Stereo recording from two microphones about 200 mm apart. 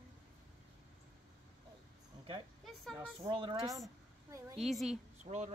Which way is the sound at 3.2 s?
25° right (ahead or behind).